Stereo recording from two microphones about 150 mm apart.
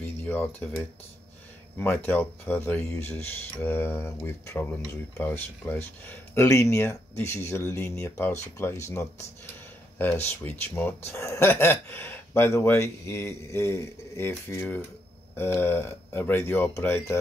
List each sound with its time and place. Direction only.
0.0 s speech: 15° left (ahead or behind)
2.0 s speech: 15° left (ahead or behind)